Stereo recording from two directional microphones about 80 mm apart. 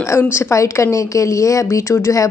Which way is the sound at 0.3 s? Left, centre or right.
Left.